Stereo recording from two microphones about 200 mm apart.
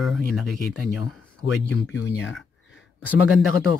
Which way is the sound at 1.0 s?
Centre (ahead or behind).